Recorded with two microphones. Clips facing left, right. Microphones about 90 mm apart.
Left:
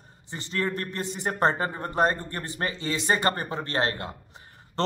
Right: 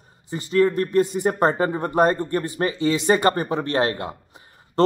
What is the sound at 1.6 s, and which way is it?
A man's voice, 20° right (ahead or behind).